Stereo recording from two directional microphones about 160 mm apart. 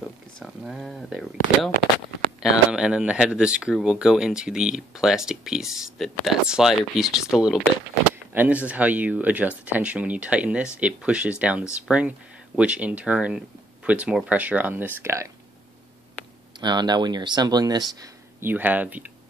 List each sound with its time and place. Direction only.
0.0 s speech: centre (ahead or behind)
8.3 s speech: 10° right (ahead or behind)
16.5 s speech: 25° right (ahead or behind)
18.4 s speech: 10° right (ahead or behind)